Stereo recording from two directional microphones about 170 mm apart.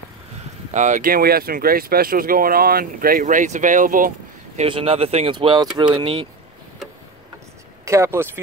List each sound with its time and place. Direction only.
0.7 s speech: 50° right (ahead or behind)
4.6 s speech: 35° right (ahead or behind)
7.8 s speech: 15° right (ahead or behind)